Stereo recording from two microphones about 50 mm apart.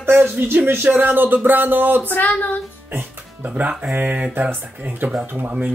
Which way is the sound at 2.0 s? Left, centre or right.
Left.